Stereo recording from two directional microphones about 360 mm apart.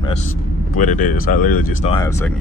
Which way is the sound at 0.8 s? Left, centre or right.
Left.